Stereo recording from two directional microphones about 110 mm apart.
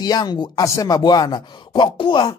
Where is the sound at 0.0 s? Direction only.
40° left (ahead or behind).